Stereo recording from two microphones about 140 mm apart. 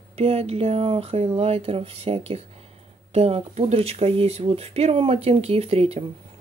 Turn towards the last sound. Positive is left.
turn(degrees=-45)  # may be behind; listen again after turning